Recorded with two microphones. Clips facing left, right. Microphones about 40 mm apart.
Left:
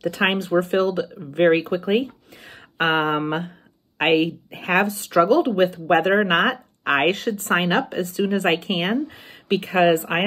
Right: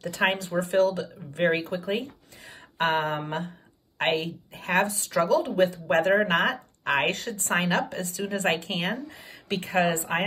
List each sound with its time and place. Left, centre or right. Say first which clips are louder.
0.0 s speech: left 4 dB; left